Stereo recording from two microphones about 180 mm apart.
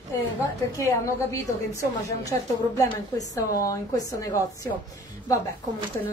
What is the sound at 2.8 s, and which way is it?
A woman's voice, 20° left (ahead or behind).